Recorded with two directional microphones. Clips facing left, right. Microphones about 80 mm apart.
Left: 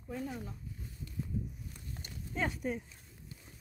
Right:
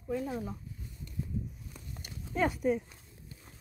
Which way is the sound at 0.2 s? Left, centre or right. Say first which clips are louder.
Right 4 dB; centre.